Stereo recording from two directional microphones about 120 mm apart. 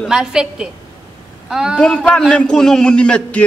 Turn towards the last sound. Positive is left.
turn(degrees=10)  # may be behind; listen again after turning